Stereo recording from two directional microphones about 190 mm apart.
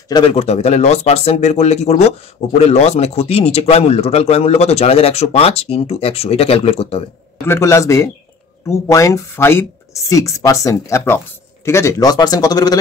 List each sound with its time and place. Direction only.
0.1 s speech: 30° left (ahead or behind)
7.4 s a man's voice: 15° left (ahead or behind)